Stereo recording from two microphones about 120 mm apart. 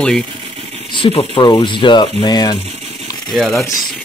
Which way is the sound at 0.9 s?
50° left (ahead or behind).